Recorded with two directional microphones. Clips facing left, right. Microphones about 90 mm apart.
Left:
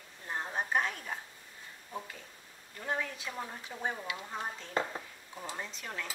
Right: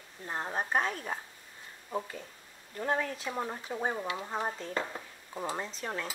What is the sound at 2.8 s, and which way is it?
A woman's voice, 40° right (ahead or behind).